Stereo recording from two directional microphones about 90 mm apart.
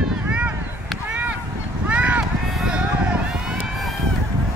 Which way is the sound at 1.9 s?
15° right (ahead or behind).